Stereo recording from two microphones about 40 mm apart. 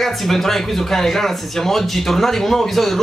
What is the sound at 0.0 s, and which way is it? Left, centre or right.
Speech, centre.